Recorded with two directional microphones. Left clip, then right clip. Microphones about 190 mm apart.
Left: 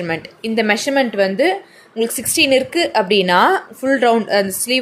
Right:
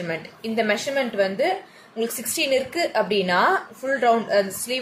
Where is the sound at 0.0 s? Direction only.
50° left (ahead or behind).